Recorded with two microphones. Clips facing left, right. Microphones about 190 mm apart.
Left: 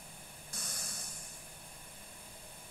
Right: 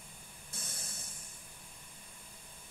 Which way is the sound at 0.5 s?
25° right (ahead or behind).